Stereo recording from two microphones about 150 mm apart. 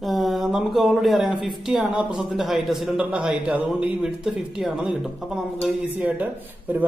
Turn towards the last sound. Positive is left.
turn(degrees=-10)  # may be behind; listen again after turning